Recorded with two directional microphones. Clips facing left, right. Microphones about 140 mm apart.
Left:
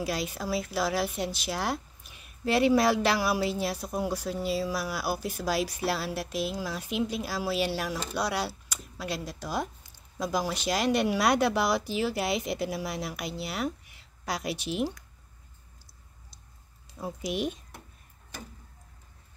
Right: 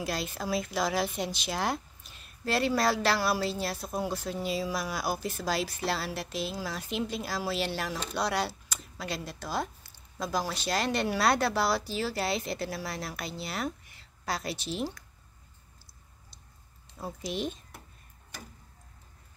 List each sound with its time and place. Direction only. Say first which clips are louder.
0.0 s speech: left 2 dB; 10° left (ahead or behind)
17.0 s speech: left 3 dB; 10° left (ahead or behind)